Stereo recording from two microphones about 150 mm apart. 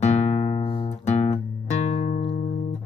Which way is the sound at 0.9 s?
50° left (ahead or behind).